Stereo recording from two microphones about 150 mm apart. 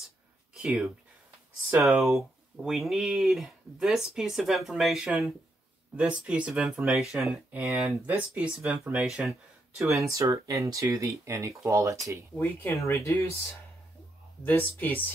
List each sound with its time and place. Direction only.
0.6 s speech: 10° right (ahead or behind)
2.6 s speech: centre (ahead or behind)
9.8 s speech: 20° right (ahead or behind)
12.4 s speech: 15° left (ahead or behind)
14.8 s speech: 10° left (ahead or behind)